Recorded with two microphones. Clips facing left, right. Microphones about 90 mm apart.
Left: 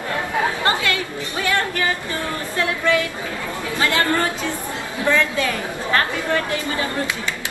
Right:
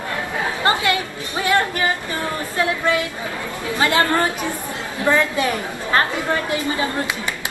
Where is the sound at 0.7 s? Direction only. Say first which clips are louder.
Right 2 dB; 20° right (ahead or behind).